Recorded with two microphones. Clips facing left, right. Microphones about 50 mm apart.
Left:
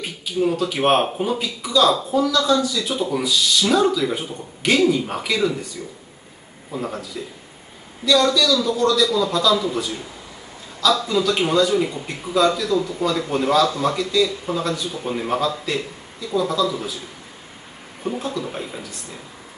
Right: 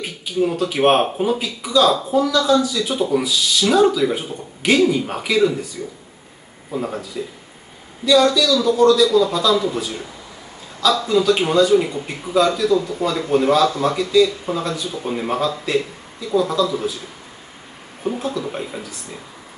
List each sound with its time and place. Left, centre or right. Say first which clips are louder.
0.0 s a man's voice: right 1 dB; centre
6.7 s a man's voice: right 3 dB; centre
18.0 s a man's voice: right 2 dB; centre